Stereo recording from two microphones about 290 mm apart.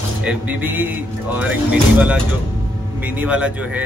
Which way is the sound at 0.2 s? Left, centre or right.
Centre.